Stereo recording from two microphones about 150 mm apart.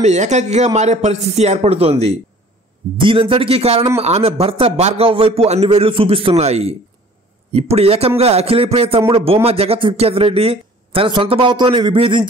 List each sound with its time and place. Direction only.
0.0 s speech: 50° right (ahead or behind); by 12.3 s 35° right (ahead or behind)